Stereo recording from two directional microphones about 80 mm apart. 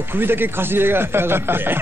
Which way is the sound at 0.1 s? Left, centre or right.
Right.